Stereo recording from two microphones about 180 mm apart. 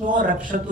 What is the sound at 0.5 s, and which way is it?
Speech, 50° right (ahead or behind).